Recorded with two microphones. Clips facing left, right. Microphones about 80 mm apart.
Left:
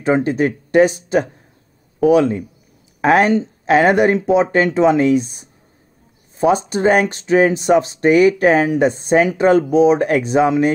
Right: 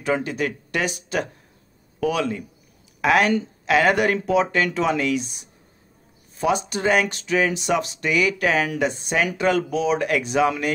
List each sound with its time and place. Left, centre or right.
0.0 s a man's voice: left